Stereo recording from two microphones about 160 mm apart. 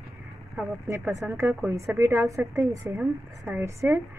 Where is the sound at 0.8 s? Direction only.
15° right (ahead or behind).